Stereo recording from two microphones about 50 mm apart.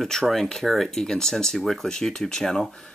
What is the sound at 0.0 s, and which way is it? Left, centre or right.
Speech, centre.